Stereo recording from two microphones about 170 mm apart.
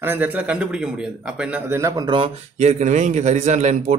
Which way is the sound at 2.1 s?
35° right (ahead or behind).